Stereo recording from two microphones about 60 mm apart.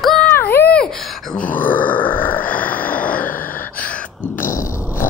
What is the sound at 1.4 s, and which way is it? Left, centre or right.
Grunt, left.